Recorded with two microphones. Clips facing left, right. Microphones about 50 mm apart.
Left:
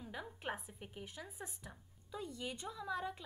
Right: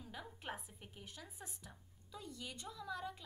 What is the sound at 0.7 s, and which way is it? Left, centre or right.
A woman's voice, centre.